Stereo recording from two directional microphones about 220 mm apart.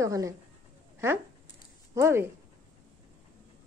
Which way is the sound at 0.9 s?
10° right (ahead or behind).